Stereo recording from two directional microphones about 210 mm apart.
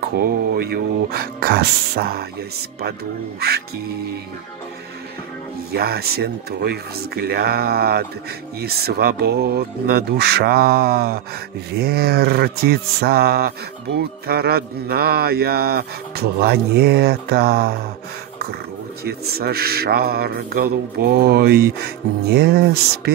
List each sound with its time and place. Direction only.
0.1 s speech: 45° right (ahead or behind)
3.3 s speech: 50° right (ahead or behind)
5.7 s speech: 50° right (ahead or behind)
19.0 s speech: 50° right (ahead or behind)